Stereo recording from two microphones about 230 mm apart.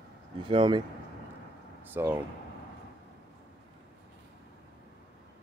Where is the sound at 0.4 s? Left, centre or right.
Right.